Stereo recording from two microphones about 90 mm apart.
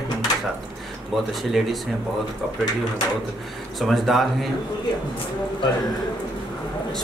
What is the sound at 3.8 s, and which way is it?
Speech, centre (ahead or behind).